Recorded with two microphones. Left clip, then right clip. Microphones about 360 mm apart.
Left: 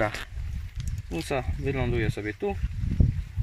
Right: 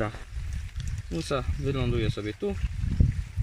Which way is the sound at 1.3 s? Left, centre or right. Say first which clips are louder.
Even; centre.